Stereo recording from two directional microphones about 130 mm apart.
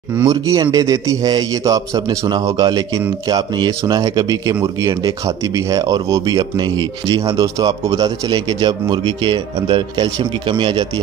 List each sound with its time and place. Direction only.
0.2 s a man's voice: 25° right (ahead or behind)